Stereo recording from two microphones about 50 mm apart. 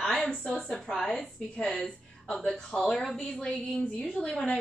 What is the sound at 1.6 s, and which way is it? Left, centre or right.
A woman's voice, centre.